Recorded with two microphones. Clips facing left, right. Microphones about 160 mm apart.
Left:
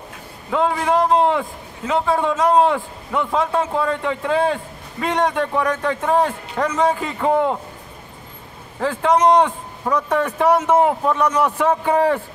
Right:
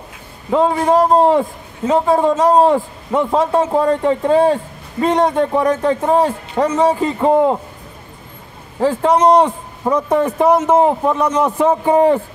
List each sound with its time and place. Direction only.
0.5 s a man's voice: 30° right (ahead or behind)
8.7 s a man's voice: 30° right (ahead or behind)
10.0 s speech: 20° right (ahead or behind)